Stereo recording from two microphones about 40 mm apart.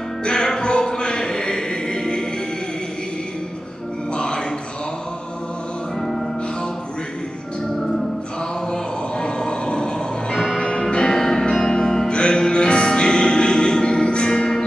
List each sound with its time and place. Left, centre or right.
0.2 s music: centre
4.1 s music: centre
5.9 s music: centre
8.6 s music: left
12.1 s music: left